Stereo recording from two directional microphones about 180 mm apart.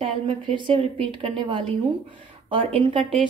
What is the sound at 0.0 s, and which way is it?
A woman's voice, 30° right (ahead or behind).